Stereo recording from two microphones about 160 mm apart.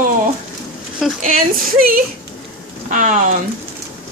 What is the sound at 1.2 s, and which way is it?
Speech, 60° right (ahead or behind).